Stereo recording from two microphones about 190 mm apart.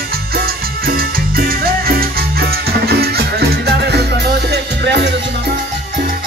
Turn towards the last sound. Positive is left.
turn(degrees=-65)  # may be behind; listen again after turning